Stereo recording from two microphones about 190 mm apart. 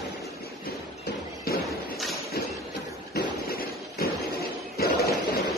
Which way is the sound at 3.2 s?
50° left (ahead or behind).